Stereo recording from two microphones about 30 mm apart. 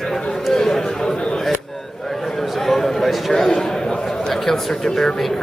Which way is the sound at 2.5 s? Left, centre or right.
Centre.